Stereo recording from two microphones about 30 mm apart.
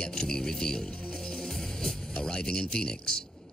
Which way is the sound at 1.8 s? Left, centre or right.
Left.